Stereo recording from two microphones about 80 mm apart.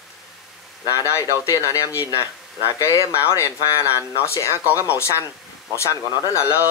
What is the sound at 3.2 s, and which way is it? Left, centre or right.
Speech, left.